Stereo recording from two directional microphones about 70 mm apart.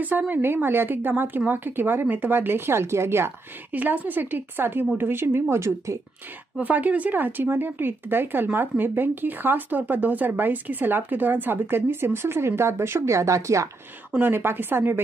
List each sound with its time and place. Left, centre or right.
0.0 s speech: right
3.7 s speech: right
6.6 s speech: right
14.1 s speech: right